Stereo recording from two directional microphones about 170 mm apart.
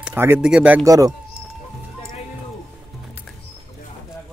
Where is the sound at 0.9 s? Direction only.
20° right (ahead or behind).